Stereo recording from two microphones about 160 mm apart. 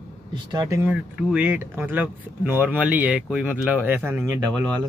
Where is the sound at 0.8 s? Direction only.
5° right (ahead or behind).